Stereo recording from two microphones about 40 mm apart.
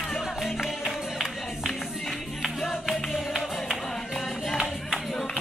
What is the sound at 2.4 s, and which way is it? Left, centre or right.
Music, centre.